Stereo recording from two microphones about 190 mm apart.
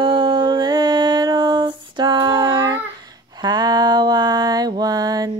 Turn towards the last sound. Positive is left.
turn(degrees=-20)  # may be behind; listen again after turning